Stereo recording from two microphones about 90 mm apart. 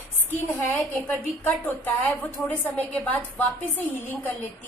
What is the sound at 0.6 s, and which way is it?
A woman's voice, 20° left (ahead or behind).